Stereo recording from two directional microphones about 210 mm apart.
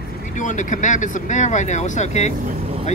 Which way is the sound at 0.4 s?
35° left (ahead or behind).